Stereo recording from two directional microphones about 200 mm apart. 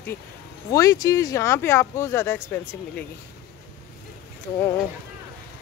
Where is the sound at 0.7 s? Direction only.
15° left (ahead or behind).